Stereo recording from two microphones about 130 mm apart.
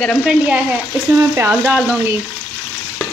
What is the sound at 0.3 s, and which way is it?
Speech, 10° right (ahead or behind).